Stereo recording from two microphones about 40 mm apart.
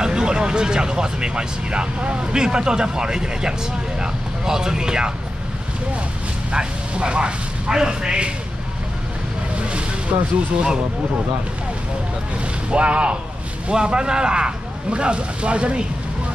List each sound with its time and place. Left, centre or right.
0.0 s speech: right
6.5 s a man's voice: right
9.6 s vehicle: right
10.1 s speech: right
12.6 s speech: right